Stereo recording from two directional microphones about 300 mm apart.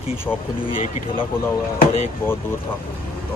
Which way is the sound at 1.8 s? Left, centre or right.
Left.